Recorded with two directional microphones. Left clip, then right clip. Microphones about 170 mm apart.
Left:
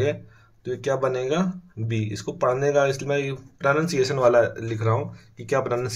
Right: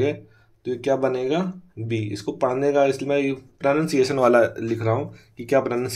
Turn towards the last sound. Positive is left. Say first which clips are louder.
# right 3 dB
turn(degrees=-15)  # may be behind; listen again after turning